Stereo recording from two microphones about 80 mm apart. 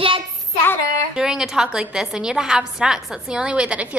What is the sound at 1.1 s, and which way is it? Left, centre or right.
A woman's voice, centre.